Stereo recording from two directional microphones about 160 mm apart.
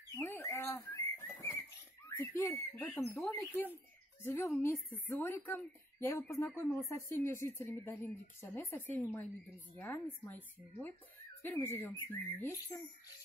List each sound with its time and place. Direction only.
0.2 s bird: 15° left (ahead or behind)
2.0 s a woman's voice: 15° left (ahead or behind)